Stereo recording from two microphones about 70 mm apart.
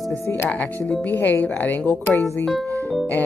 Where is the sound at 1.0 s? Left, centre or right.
Left.